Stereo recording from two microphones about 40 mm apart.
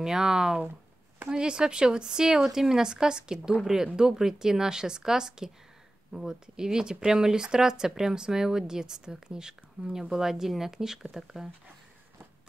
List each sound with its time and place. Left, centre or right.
0.0 s speech: centre